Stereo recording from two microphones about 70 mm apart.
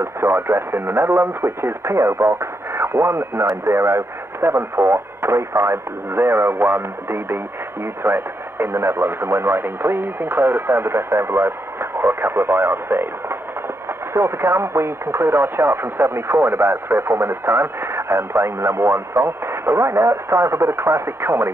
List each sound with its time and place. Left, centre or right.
0.0 s speech: right